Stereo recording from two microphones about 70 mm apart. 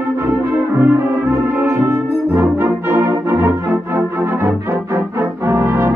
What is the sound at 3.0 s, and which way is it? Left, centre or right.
Music, right.